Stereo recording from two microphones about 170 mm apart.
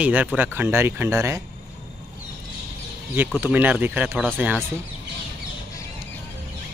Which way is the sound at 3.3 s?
10° right (ahead or behind).